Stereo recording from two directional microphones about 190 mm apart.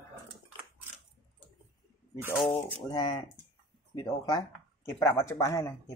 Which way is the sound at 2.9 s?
25° left (ahead or behind).